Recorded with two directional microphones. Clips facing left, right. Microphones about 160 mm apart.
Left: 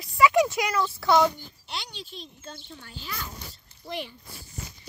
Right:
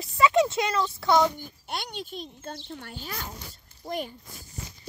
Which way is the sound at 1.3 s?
50° right (ahead or behind).